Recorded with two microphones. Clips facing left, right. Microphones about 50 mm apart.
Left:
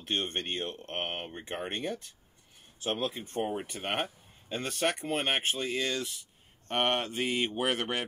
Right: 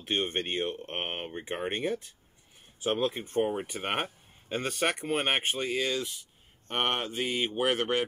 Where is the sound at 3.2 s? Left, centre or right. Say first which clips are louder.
Right 4 dB; centre.